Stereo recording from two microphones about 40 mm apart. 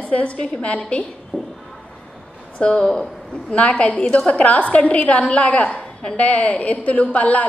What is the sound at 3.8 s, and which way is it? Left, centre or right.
A woman's voice, left.